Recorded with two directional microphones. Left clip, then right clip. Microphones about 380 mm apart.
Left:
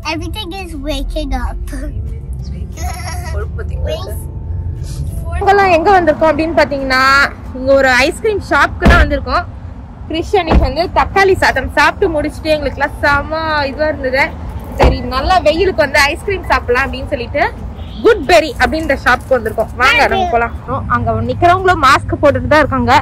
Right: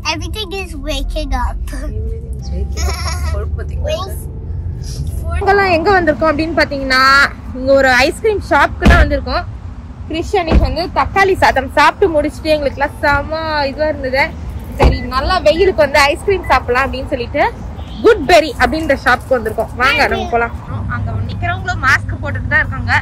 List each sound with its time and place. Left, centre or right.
0.0 s speech: centre
5.4 s speech: centre